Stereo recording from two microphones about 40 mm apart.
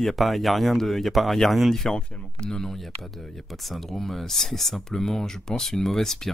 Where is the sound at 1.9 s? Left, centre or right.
Centre.